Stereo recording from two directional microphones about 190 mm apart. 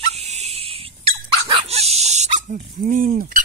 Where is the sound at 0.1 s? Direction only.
35° right (ahead or behind).